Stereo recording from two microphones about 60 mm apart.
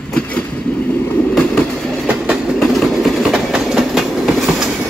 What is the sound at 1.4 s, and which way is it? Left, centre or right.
Train, left.